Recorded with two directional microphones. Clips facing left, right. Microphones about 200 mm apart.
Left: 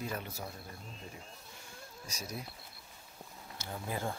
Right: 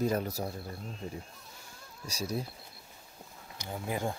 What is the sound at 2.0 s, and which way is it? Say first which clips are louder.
Speech: right 9 dB; 30° right (ahead or behind).